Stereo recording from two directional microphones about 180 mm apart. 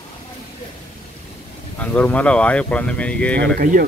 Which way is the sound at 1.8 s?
10° left (ahead or behind).